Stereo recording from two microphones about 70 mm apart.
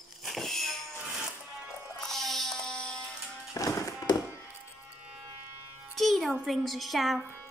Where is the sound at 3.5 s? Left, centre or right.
Left.